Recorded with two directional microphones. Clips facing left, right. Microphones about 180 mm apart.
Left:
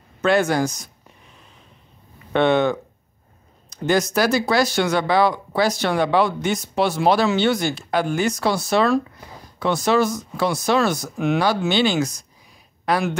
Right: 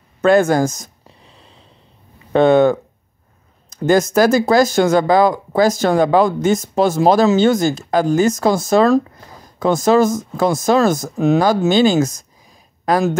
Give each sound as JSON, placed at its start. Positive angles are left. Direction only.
{"t": 0.2, "sound": "a sound", "side_deg": -45}
{"t": 2.3, "sound": "speech", "side_deg": -45}
{"t": 3.8, "sound": "speech", "side_deg": -45}